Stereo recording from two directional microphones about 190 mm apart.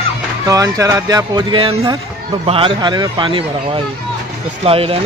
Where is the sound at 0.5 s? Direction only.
15° right (ahead or behind).